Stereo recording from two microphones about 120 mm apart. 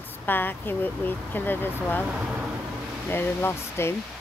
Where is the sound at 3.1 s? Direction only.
20° left (ahead or behind).